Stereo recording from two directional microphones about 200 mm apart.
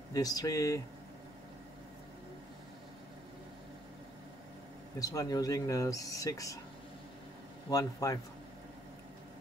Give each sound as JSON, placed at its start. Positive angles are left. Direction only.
{"t": 0.1, "sound": "speech", "side_deg": 15}
{"t": 4.9, "sound": "speech", "side_deg": 20}
{"t": 7.7, "sound": "speech", "side_deg": 15}